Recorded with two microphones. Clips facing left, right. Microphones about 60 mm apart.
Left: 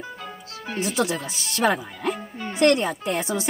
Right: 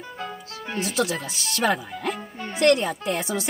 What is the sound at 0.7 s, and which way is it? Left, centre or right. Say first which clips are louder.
Speech: left 1 dB; left.